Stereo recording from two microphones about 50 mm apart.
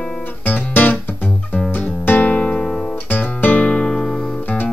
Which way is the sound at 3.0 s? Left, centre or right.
Left.